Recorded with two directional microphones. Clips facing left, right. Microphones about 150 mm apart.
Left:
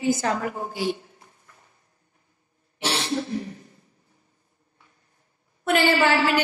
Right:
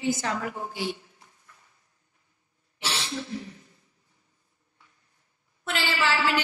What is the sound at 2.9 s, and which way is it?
Cough, 40° left (ahead or behind).